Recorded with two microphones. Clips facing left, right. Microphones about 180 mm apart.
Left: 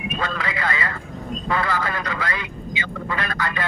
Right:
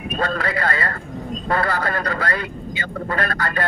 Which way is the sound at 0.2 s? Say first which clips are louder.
Right 5 dB; 45° right (ahead or behind).